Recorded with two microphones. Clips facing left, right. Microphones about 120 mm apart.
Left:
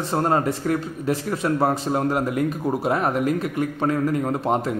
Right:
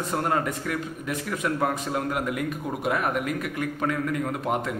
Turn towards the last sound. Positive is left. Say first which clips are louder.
# left 5 dB
turn(degrees=30)  # may be behind; listen again after turning